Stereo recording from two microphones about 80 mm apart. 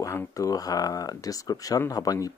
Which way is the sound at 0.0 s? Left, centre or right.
Left.